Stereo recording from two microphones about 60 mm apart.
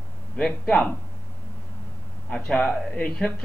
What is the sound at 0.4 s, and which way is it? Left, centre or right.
Speech, centre.